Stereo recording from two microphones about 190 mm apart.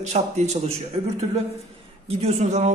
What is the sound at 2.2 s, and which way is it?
Speech, 35° right (ahead or behind).